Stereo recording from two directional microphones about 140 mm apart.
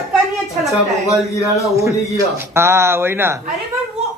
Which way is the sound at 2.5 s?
20° right (ahead or behind).